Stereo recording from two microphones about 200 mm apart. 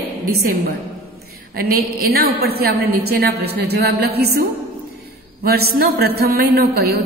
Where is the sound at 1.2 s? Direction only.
50° right (ahead or behind).